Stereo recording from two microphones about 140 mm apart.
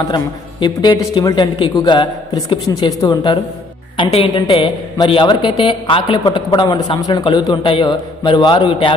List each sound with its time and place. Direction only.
0.1 s a woman's voice: 30° left (ahead or behind)